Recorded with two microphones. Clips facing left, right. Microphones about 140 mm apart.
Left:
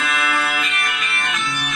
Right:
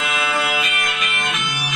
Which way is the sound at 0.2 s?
20° right (ahead or behind).